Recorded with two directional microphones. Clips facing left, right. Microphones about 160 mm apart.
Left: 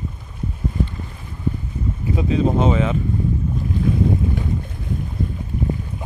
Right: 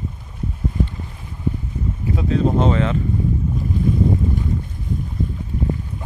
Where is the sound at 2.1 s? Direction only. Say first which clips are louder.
Even; 5° left (ahead or behind).